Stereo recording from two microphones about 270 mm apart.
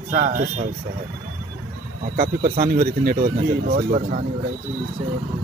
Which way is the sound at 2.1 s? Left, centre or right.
Right.